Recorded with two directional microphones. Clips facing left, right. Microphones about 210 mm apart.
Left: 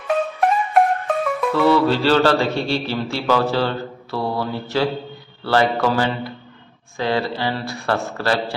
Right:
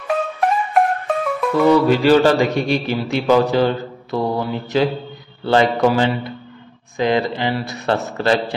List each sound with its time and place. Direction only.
0.0 s music: centre (ahead or behind)
1.5 s a man's voice: 15° right (ahead or behind)